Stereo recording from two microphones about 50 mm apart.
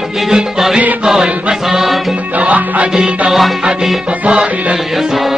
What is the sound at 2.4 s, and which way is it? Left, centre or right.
Music, right.